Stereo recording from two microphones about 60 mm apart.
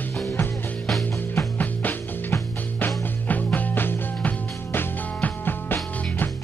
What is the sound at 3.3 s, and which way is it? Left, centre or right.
Music, left.